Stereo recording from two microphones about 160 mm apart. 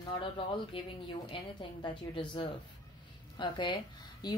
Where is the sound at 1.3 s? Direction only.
30° left (ahead or behind).